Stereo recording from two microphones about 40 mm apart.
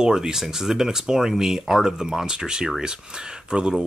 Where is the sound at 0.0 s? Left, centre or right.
Centre.